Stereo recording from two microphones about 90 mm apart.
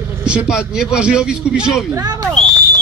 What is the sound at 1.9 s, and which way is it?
Speech, 40° right (ahead or behind).